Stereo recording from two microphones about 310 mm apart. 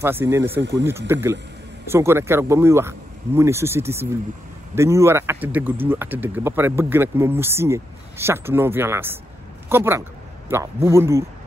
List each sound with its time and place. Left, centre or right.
0.0 s speech: centre
0.6 s speech: right
0.8 s speech: centre